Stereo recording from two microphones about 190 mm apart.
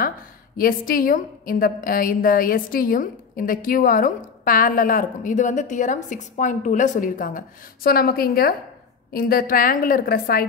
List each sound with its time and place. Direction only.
0.6 s a woman's voice: 50° left (ahead or behind)